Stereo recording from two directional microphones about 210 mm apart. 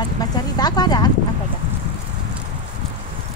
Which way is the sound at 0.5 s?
20° left (ahead or behind).